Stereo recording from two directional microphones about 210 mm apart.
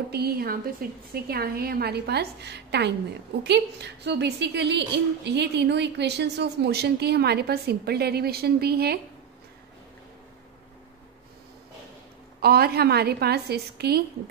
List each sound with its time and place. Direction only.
0.1 s a woman's voice: 50° right (ahead or behind)
12.4 s a woman's voice: 45° right (ahead or behind)